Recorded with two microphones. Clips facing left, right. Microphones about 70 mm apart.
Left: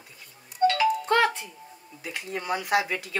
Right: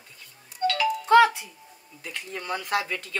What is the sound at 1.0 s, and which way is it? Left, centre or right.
Speech, centre.